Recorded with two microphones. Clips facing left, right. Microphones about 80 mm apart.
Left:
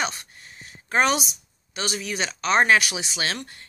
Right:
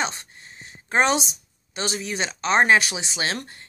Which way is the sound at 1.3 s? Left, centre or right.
Right.